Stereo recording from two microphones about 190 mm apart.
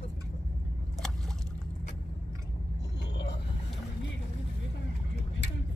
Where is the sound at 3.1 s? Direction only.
65° left (ahead or behind).